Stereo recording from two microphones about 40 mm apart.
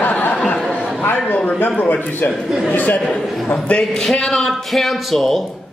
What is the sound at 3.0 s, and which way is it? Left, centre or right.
Speech, centre.